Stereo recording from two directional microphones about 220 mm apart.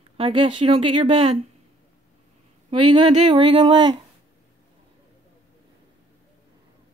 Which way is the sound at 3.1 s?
20° right (ahead or behind).